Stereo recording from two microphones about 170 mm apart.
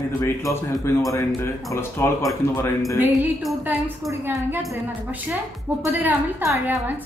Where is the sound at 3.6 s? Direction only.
10° right (ahead or behind).